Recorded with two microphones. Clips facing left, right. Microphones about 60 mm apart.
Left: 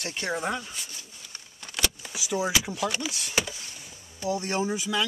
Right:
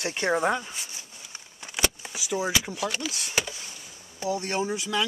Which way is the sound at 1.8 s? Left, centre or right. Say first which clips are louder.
Right 2 dB; centre.